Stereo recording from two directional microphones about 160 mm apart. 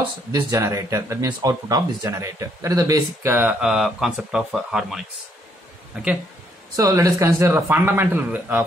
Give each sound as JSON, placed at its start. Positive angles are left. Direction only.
{"t": 0.3, "sound": "speech", "side_deg": -20}
{"t": 6.8, "sound": "speech", "side_deg": -20}